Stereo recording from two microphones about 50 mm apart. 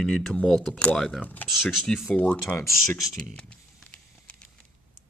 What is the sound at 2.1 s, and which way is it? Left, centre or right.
Speech, left.